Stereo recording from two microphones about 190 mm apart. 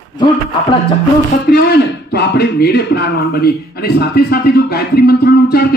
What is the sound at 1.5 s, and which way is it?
Speech, 60° left (ahead or behind).